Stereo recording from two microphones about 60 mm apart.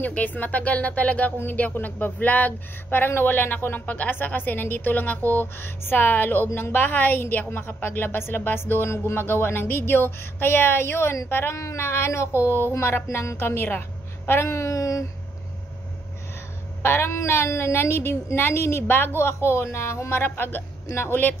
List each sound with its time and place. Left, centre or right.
0.0 s a woman's voice: left
11.5 s a woman's voice: left
14.5 s a sound: left
16.8 s a woman's voice: left